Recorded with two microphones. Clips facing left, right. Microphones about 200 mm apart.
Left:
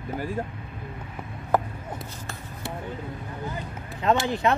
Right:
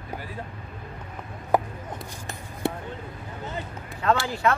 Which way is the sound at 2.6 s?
55° right (ahead or behind).